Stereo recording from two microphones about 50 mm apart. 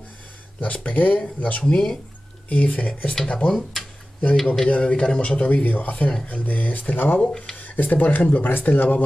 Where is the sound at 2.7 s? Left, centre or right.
Left.